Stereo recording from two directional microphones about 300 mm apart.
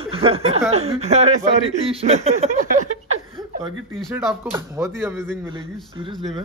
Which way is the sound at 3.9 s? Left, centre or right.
Centre.